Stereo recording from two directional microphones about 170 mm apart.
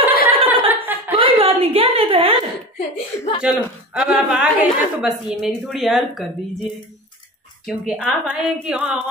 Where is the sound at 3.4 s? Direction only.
5° right (ahead or behind).